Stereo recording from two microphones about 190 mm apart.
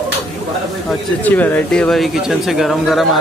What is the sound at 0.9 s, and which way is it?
Speech, 10° left (ahead or behind).